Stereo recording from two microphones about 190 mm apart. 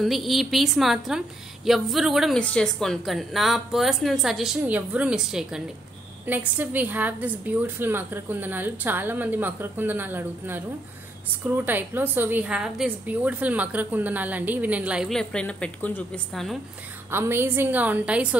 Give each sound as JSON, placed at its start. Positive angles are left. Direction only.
{"t": 0.0, "sound": "a woman's voice", "side_deg": 0}
{"t": 17.1, "sound": "a woman's voice", "side_deg": -10}